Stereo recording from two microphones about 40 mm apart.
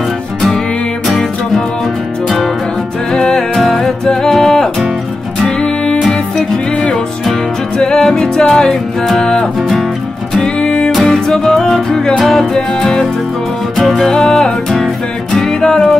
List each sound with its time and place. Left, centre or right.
2.2 s music: centre
3.1 s music: centre
4.0 s music: centre
6.0 s music: centre
13.7 s music: centre
14.1 s music: centre
15.6 s music: centre